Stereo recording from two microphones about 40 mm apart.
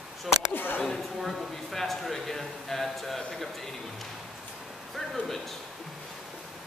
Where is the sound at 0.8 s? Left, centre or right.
Centre.